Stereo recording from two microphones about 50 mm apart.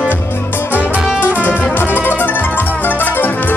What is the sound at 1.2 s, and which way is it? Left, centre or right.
Music, left.